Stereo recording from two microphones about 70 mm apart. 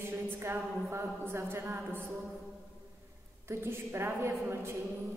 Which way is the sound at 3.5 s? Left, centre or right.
Right.